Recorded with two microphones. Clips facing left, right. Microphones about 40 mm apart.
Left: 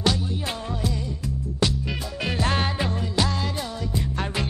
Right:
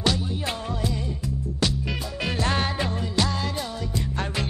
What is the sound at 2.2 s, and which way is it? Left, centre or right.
Music, centre.